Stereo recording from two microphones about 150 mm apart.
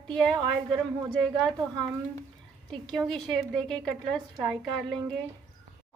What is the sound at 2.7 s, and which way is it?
A woman's voice, centre (ahead or behind).